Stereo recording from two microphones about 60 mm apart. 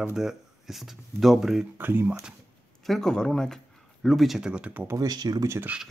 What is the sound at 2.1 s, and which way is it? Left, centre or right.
Speech, centre.